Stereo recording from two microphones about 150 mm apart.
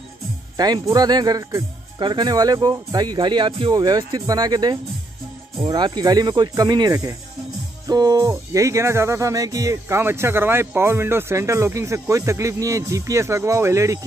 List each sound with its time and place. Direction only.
0.6 s music: 25° right (ahead or behind)